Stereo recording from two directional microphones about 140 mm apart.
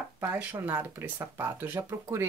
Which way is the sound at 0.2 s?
10° right (ahead or behind).